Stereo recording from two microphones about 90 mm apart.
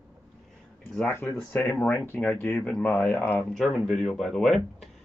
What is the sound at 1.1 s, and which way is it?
Speech, 20° left (ahead or behind).